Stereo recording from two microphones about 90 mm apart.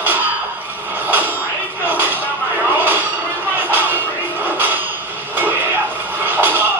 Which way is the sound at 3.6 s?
20° right (ahead or behind).